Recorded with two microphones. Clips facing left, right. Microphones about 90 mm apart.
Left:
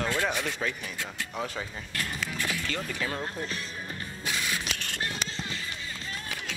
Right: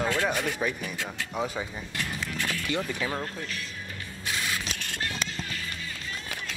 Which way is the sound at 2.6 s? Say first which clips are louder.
Right 3 dB; 15° right (ahead or behind).